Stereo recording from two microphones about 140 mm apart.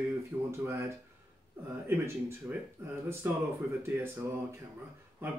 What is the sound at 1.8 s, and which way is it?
Speech, 15° right (ahead or behind).